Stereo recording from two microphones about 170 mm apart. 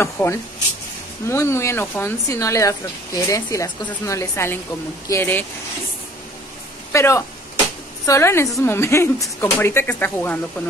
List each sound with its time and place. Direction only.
0.0 s speech: 15° left (ahead or behind)
6.9 s speech: 15° left (ahead or behind)